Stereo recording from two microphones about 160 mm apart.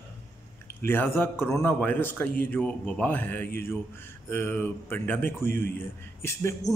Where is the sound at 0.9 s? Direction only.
15° left (ahead or behind).